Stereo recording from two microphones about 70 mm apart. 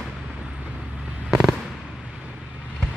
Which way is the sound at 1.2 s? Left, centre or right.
Centre.